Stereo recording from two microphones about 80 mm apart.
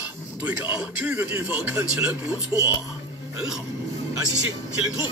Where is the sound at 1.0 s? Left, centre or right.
Right.